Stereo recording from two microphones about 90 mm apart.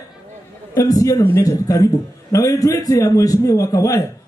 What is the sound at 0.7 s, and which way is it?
A man's voice, 40° left (ahead or behind).